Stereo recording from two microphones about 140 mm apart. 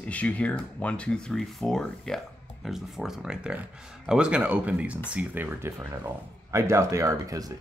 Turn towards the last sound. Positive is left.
turn(degrees=-25)  # may be behind; listen again after turning